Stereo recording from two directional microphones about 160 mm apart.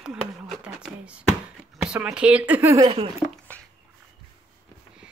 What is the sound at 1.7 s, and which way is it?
Speech, 5° right (ahead or behind).